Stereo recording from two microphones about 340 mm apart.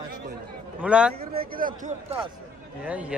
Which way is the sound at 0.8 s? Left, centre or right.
Centre.